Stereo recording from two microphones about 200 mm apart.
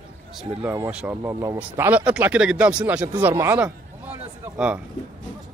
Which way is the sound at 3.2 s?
15° right (ahead or behind).